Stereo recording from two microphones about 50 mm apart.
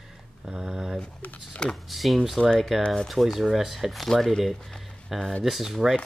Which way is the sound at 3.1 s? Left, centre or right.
Centre.